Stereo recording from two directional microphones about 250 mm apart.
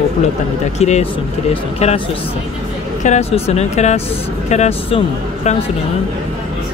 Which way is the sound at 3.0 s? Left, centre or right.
Left.